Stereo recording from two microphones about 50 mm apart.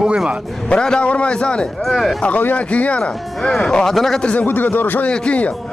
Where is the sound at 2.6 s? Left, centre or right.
Left.